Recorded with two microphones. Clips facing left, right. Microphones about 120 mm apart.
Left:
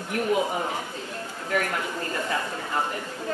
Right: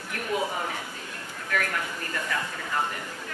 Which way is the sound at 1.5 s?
20° left (ahead or behind).